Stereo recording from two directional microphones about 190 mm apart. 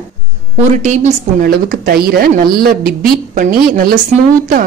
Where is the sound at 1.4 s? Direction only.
50° right (ahead or behind).